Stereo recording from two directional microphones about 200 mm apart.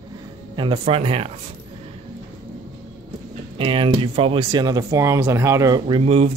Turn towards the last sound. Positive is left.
turn(degrees=-30)  # may be behind; listen again after turning